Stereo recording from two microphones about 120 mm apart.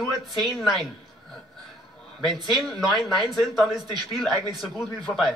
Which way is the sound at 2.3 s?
35° right (ahead or behind).